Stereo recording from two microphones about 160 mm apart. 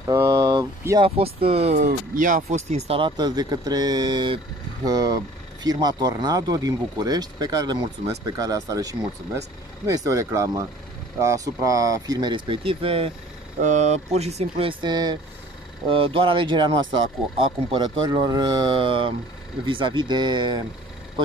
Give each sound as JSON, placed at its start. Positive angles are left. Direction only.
{"t": 0.0, "sound": "vehicle", "side_deg": -20}
{"t": 1.8, "sound": "speech", "side_deg": -55}
{"t": 3.2, "sound": "speech", "side_deg": -25}
{"t": 13.6, "sound": "speech", "side_deg": -50}